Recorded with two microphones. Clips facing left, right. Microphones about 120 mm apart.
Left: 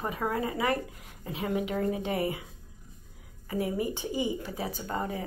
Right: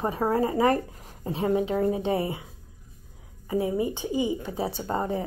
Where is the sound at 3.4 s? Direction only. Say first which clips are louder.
Right 4 dB; 25° right (ahead or behind).